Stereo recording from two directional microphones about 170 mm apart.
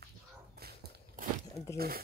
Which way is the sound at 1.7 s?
65° right (ahead or behind).